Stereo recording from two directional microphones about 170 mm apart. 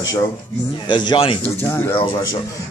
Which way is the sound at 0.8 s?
25° left (ahead or behind).